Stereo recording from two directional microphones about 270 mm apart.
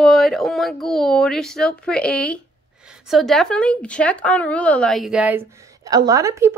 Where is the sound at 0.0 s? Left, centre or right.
Centre.